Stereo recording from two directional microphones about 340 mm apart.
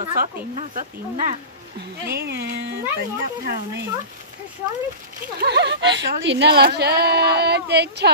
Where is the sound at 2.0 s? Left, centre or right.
Right.